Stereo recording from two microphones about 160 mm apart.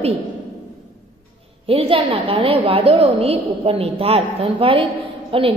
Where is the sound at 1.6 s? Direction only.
35° right (ahead or behind).